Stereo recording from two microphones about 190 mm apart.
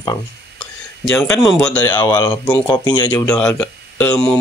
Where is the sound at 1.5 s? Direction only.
5° left (ahead or behind).